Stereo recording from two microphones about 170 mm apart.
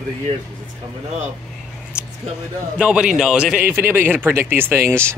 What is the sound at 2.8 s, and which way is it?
A man's voice, 5° right (ahead or behind).